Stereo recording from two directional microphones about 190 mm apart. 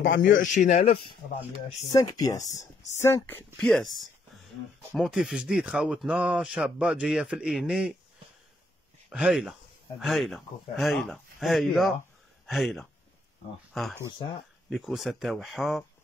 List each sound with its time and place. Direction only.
0.5 s speech: 40° left (ahead or behind)
1.9 s speech: 20° left (ahead or behind); by 7.9 s 5° right (ahead or behind)
9.1 s speech: 5° right (ahead or behind)